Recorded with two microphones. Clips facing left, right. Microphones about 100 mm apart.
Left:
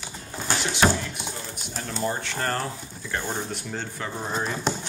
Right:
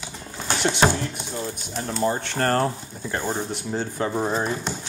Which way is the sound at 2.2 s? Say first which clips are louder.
Right 5 dB; 50° right (ahead or behind).